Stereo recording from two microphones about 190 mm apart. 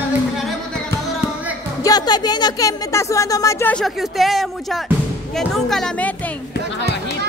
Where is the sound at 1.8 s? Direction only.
20° left (ahead or behind).